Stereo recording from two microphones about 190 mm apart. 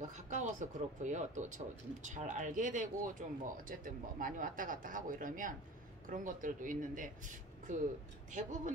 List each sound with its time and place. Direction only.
0.0 s speech: 40° right (ahead or behind)